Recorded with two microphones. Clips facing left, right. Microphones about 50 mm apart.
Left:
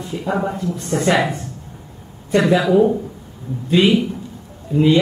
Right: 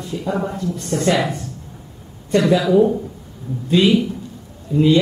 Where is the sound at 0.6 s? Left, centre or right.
Centre.